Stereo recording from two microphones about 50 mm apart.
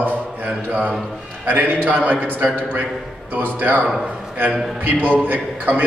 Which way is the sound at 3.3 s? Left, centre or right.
Right.